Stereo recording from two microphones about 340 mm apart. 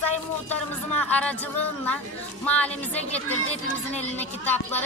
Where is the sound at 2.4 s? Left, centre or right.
Centre.